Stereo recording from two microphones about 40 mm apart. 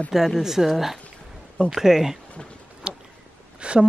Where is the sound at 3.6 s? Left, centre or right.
Right.